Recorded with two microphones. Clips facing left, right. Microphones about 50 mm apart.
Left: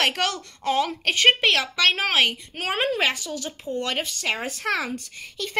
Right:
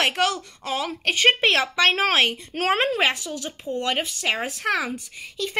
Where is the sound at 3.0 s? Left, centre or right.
Centre.